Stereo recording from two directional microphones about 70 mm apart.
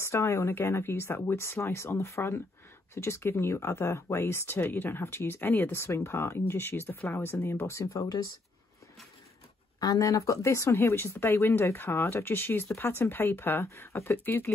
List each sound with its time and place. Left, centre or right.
0.0 s speech: left
7.5 s speech: left
9.8 s speech: left